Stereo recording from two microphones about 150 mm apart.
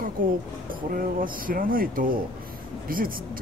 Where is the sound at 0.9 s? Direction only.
70° right (ahead or behind).